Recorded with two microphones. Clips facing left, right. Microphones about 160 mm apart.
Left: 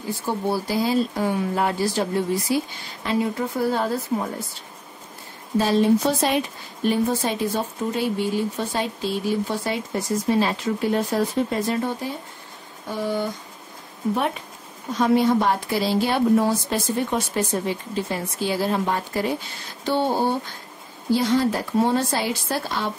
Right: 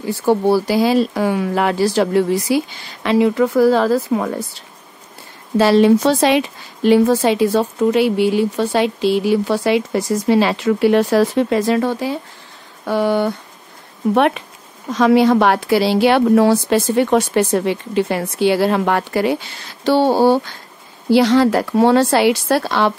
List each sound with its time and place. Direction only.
0.0 s speech: 75° right (ahead or behind)
12.8 s speech: 70° right (ahead or behind)
14.9 s a woman's voice: 90° right